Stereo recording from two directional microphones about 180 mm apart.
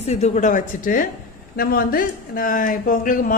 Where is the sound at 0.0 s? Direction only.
40° left (ahead or behind).